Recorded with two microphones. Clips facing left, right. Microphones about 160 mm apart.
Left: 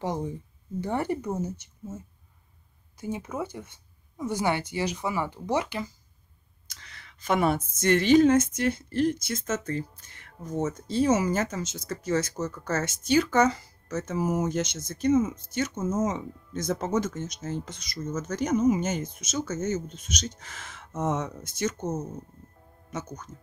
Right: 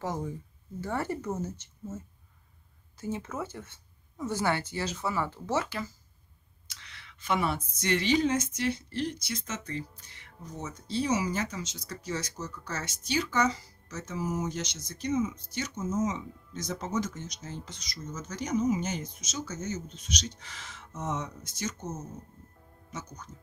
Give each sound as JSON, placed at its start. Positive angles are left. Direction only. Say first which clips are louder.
{"t": 0.0, "sound": "speech", "louder": "left 3 dB", "side_deg": 20}
{"t": 6.7, "sound": "speech", "louder": "left 2 dB", "side_deg": 40}